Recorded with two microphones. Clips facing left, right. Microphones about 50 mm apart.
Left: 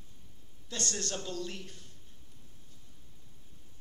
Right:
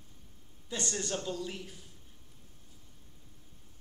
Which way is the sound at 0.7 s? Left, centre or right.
Centre.